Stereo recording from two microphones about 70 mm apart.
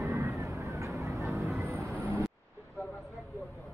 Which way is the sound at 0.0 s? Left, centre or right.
Right.